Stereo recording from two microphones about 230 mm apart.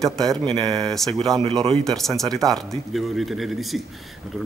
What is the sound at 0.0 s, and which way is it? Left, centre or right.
Speech, centre.